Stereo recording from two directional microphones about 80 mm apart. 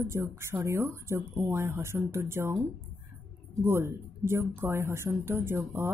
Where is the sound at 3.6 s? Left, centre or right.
Right.